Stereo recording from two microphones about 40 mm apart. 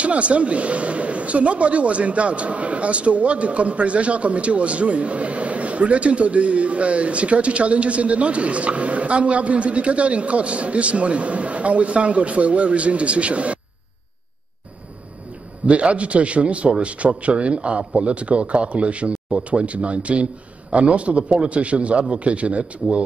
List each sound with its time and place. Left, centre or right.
0.0 s a man's voice: right
15.6 s a man's voice: right